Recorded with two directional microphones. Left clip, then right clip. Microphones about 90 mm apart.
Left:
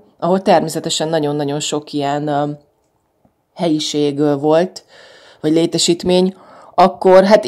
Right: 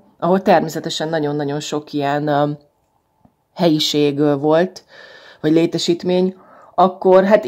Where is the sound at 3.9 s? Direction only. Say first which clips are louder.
Even; centre (ahead or behind).